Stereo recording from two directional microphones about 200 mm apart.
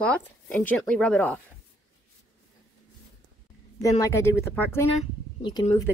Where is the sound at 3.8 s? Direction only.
15° left (ahead or behind).